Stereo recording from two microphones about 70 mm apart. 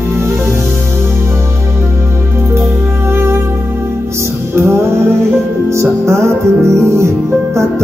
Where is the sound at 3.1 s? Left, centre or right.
Right.